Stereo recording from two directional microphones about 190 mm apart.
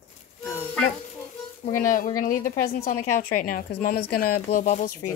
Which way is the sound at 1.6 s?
45° left (ahead or behind).